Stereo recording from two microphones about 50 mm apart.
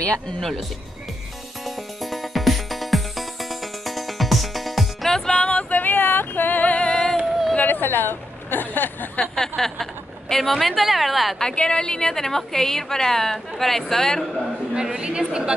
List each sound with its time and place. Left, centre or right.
0.4 s a woman's voice: centre
2.0 s music: centre
5.1 s music: centre
5.8 s a sound: left
6.8 s a sound: centre
7.6 s a sound: left
9.2 s a woman's voice: centre
11.3 s a woman's voice: centre
14.7 s a woman's voice: centre